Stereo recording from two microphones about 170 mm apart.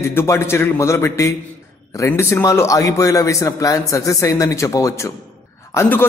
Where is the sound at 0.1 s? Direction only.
15° left (ahead or behind).